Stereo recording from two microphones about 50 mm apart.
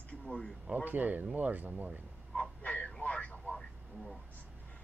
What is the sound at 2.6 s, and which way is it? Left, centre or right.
Radio, left.